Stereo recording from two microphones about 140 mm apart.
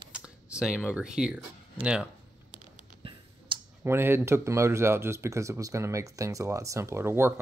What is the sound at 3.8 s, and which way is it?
Speech, 15° right (ahead or behind).